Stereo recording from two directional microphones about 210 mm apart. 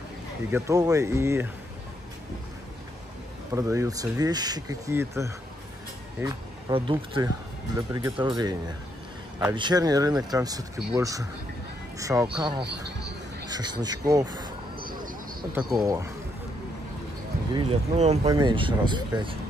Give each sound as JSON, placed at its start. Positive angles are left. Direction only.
{"t": 0.5, "sound": "speech", "side_deg": -15}
{"t": 3.5, "sound": "speech", "side_deg": -15}
{"t": 6.7, "sound": "speech", "side_deg": -25}
{"t": 15.5, "sound": "speech", "side_deg": 0}
{"t": 17.5, "sound": "speech", "side_deg": -25}
{"t": 18.2, "sound": "speech", "side_deg": -20}